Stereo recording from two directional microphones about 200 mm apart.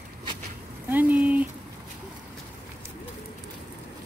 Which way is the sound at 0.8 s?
10° right (ahead or behind).